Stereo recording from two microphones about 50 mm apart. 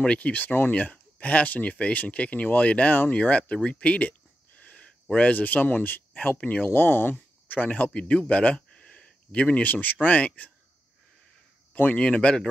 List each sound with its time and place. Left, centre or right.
0.0 s speech: left
0.3 s speech: left
4.6 s a sound: left
5.1 s speech: left
7.9 s speech: left
11.7 s speech: left
12.0 s speech: left